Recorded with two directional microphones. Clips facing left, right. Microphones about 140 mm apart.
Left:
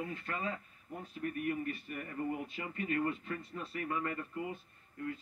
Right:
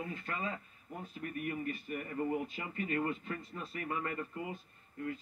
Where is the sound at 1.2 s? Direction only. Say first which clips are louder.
Left 3 dB; 25° right (ahead or behind).